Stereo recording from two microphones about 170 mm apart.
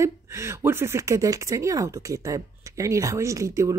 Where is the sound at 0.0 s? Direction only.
15° right (ahead or behind).